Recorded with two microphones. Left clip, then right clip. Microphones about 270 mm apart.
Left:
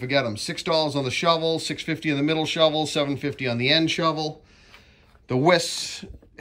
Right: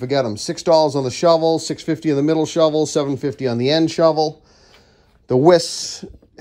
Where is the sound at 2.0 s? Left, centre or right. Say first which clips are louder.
Right 7 dB; right.